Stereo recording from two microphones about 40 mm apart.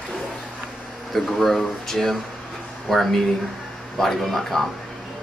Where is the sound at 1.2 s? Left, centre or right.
Centre.